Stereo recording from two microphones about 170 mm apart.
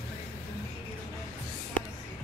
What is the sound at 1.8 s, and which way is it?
Music, 10° left (ahead or behind).